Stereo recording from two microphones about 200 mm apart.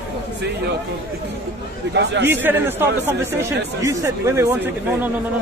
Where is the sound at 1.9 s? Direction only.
60° right (ahead or behind).